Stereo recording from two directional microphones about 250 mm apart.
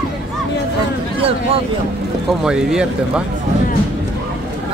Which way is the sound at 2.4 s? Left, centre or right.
Centre.